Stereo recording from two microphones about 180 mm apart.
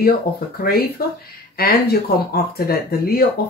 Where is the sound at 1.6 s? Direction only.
60° left (ahead or behind).